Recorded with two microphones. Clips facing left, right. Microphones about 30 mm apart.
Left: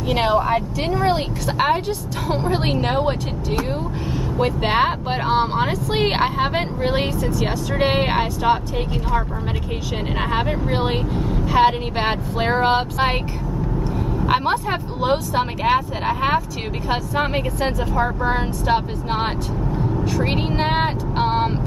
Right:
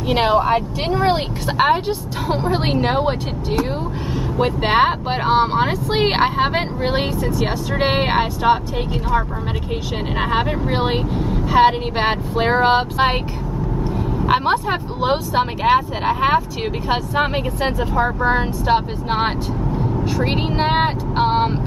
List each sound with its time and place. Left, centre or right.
0.1 s speech: centre
4.4 s speech: centre
10.3 s speech: centre